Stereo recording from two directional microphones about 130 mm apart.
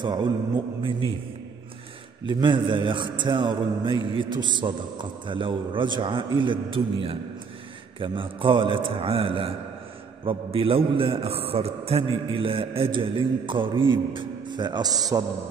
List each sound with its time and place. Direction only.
0.0 s a man's voice: 35° right (ahead or behind)
2.2 s a man's voice: 40° right (ahead or behind)